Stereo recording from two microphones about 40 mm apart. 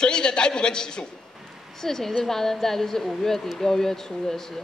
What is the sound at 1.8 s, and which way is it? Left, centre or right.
A woman's voice, centre.